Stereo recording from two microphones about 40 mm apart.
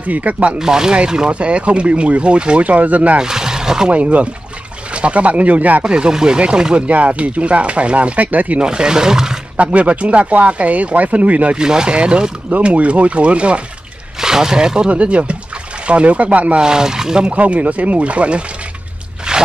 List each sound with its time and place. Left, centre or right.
0.0 s speech: right
0.6 s speech: centre
1.3 s speech: right
3.2 s a sound: centre
3.9 s speech: right
5.9 s speech: right
8.5 s speech: right
9.6 s speech: right
11.5 s speech: centre
14.2 s speech: centre
14.9 s speech: right
16.5 s speech: centre
17.3 s speech: right
19.3 s a sound: centre